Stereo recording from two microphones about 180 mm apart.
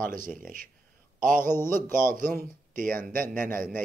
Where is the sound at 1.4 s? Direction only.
15° left (ahead or behind).